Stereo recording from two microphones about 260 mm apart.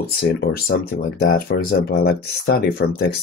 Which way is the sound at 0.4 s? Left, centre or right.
Left.